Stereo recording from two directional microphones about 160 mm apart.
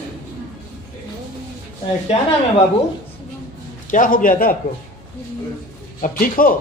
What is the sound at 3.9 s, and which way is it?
Speech, 55° left (ahead or behind).